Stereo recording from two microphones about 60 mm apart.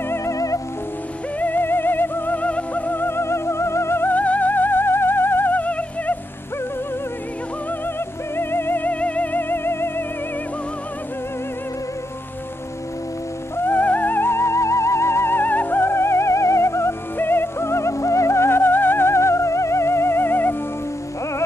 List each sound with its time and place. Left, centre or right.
0.2 s music: left
1.4 s music: left
4.1 s music: left
8.4 s music: left
13.6 s music: left
17.2 s music: left